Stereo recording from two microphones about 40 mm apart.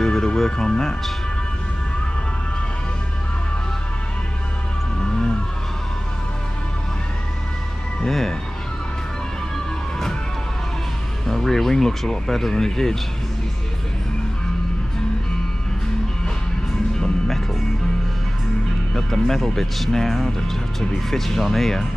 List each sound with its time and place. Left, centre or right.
0.0 s speech: centre
5.0 s vehicle: left
8.0 s cat: centre
11.2 s speech: centre
16.9 s music: centre
18.9 s speech: centre